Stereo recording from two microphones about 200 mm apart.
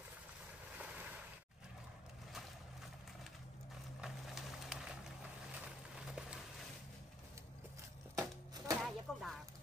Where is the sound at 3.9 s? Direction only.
Centre (ahead or behind).